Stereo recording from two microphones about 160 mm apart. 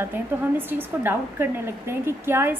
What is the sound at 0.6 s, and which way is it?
A woman's voice, 10° right (ahead or behind).